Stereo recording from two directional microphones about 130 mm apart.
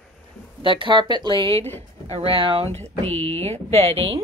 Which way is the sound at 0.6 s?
40° right (ahead or behind).